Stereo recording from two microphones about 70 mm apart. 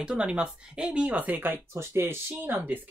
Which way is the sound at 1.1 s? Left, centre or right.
Right.